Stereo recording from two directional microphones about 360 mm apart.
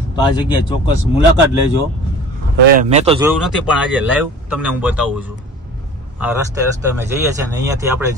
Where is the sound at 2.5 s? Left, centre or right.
Right.